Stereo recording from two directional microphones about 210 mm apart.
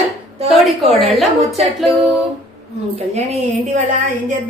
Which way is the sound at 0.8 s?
Centre (ahead or behind).